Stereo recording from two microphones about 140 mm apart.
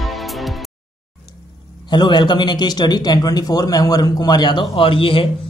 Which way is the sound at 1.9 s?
30° left (ahead or behind).